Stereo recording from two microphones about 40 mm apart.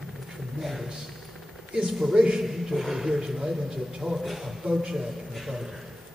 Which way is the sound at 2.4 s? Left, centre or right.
Centre.